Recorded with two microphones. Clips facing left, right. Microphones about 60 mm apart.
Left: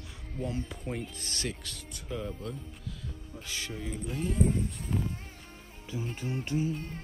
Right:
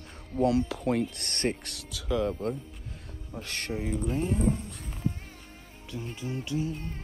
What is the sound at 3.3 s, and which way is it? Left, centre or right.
Speech, right.